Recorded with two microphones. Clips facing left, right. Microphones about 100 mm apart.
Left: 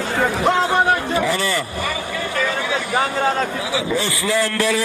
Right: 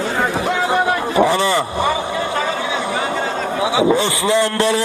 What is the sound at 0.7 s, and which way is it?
Vehicle, 25° right (ahead or behind).